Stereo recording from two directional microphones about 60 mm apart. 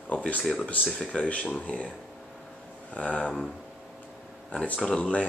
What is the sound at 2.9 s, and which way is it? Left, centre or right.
Speech, left.